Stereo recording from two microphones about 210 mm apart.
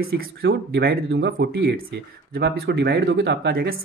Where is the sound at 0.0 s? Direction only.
50° right (ahead or behind).